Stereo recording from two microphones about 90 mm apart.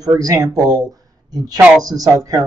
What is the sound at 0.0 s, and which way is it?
A man's voice, 40° right (ahead or behind).